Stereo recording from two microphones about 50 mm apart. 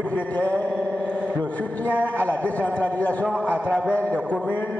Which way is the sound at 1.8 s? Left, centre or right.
Right.